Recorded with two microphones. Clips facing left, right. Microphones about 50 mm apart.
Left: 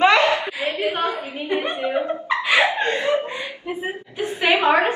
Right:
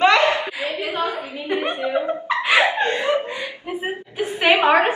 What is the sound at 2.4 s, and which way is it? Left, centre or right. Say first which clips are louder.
Laughter: right 1 dB; right.